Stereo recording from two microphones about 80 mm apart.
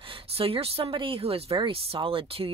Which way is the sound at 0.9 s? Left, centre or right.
Right.